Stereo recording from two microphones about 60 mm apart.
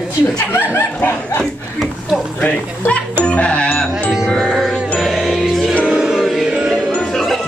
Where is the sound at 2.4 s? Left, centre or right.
Centre.